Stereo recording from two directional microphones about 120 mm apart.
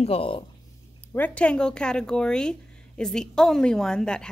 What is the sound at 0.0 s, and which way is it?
Speech, 50° left (ahead or behind).